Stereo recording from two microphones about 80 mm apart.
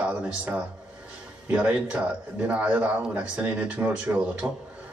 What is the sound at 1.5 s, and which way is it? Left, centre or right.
Speech, centre.